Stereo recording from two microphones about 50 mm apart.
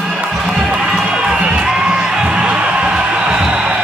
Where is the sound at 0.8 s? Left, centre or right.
Centre.